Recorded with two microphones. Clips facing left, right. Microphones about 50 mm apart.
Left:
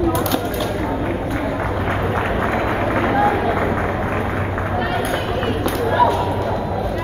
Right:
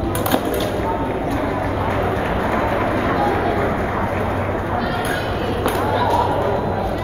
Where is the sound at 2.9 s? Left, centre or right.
Left.